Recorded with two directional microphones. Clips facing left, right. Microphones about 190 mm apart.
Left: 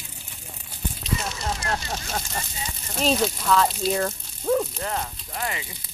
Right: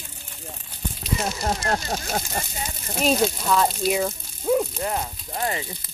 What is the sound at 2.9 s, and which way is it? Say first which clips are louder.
Speech: right 2 dB; 5° right (ahead or behind).